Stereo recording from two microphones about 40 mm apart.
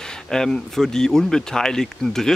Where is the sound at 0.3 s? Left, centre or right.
Centre.